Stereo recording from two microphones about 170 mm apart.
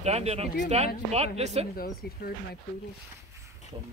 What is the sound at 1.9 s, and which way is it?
Speech, 65° left (ahead or behind).